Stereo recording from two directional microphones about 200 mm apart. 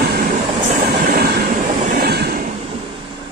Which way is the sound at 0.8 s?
50° right (ahead or behind).